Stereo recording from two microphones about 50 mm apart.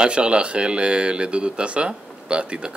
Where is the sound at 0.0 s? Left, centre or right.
Right.